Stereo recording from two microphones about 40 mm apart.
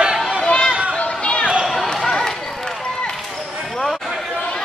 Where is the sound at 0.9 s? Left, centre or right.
Left.